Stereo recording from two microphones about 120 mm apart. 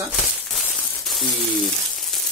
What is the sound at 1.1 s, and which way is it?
Speech, centre (ahead or behind).